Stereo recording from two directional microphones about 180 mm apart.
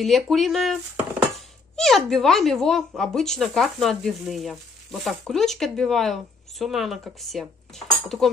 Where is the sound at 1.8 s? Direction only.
Centre (ahead or behind).